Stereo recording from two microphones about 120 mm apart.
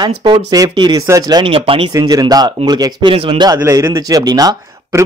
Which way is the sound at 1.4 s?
50° right (ahead or behind).